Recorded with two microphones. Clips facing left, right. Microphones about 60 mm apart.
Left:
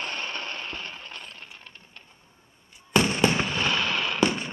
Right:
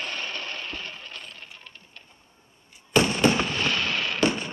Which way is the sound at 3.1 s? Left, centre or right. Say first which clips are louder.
Right 1 dB; centre.